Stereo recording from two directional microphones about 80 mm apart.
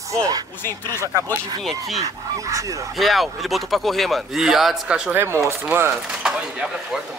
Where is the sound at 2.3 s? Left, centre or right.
Right.